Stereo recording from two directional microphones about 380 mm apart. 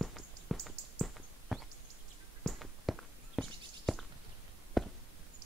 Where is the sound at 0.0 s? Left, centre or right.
Centre.